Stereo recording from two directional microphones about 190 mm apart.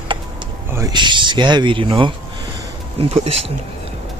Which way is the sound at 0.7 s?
20° right (ahead or behind).